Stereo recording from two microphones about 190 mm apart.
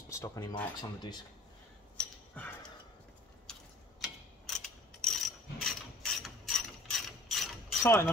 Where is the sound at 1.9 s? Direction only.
5° left (ahead or behind).